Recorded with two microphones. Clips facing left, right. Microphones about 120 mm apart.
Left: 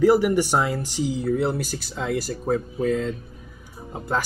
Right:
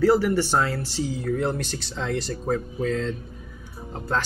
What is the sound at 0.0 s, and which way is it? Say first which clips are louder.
Speech: left 2 dB; 15° left (ahead or behind).